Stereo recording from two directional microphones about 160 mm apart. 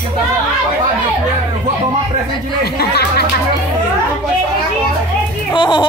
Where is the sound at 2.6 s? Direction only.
85° left.